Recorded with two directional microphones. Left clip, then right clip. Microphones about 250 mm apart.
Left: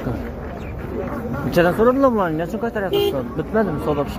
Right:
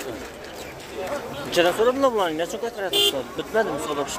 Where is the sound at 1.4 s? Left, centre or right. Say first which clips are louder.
Left 4 dB; centre.